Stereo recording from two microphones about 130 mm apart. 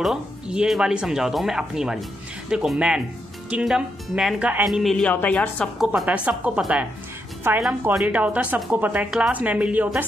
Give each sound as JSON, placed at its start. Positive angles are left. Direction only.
{"t": 0.0, "sound": "speech", "side_deg": -5}
{"t": 4.6, "sound": "a woman's voice", "side_deg": 0}
{"t": 5.8, "sound": "speech", "side_deg": -10}